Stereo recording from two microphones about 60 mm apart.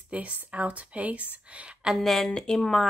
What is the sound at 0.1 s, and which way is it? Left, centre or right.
Speech, right.